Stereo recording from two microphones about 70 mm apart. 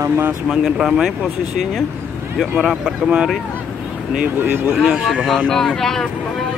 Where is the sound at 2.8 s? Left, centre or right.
Centre.